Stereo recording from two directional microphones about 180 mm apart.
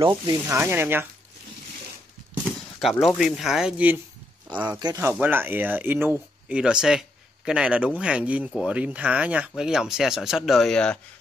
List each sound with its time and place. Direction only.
0.0 s speech: 25° right (ahead or behind)
0.5 s speech: 10° right (ahead or behind)
2.8 s speech: centre (ahead or behind)
4.7 s speech: 20° right (ahead or behind); by 11.0 s 5° left (ahead or behind)